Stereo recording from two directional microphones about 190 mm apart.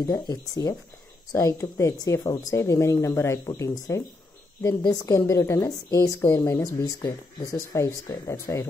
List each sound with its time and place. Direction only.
0.0 s speech: 20° left (ahead or behind)